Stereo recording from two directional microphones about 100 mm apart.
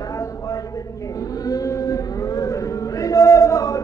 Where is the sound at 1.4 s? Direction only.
35° left (ahead or behind).